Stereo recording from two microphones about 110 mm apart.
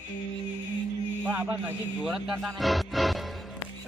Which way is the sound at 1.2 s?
15° right (ahead or behind).